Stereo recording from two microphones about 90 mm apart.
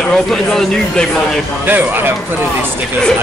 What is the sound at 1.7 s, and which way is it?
Speech, 20° right (ahead or behind).